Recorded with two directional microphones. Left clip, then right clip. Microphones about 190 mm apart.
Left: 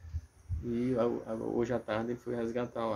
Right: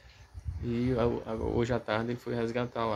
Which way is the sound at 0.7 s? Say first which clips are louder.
Right 2 dB; 25° right (ahead or behind).